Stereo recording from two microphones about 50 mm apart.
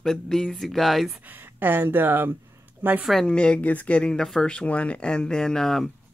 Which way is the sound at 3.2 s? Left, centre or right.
Left.